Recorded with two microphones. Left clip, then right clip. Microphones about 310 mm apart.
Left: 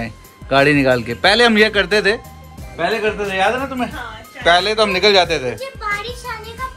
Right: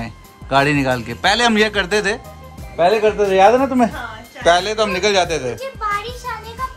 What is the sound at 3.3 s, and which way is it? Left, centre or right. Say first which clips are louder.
Speech: right 8 dB; centre.